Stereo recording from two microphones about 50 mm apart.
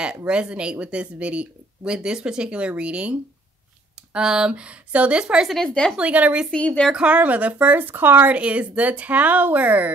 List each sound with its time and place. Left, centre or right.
0.3 s speech: centre
5.2 s speech: centre
5.6 s speech: centre
5.9 s speech: right
6.5 s a woman's voice: left
7.0 s a woman's voice: right
8.4 s a woman's voice: right